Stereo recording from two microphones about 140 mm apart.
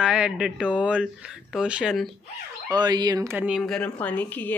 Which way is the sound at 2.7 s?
30° right (ahead or behind).